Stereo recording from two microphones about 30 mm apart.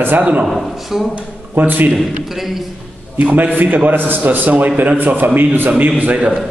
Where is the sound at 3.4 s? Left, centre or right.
Right.